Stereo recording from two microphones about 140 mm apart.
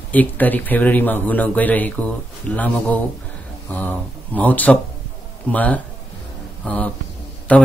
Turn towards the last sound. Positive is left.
turn(degrees=10)  # may be behind; listen again after turning